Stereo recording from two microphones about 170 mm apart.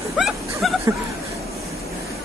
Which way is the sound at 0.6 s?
Centre (ahead or behind).